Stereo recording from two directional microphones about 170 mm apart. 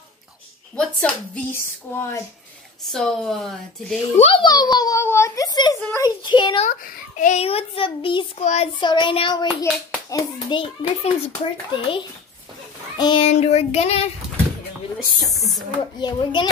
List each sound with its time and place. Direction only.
0.7 s a woman's voice: 5° left (ahead or behind)
2.9 s speech: centre (ahead or behind)
4.2 s a child's voice: 30° left (ahead or behind)
6.6 s a child's voice: 50° left (ahead or behind); by 8.3 s 30° left (ahead or behind)
8.4 s a child's voice: 40° left (ahead or behind)
8.7 s a child's voice: 25° left (ahead or behind)
10.6 s a child's voice: 30° left (ahead or behind)
16.0 s a child's voice: 25° left (ahead or behind)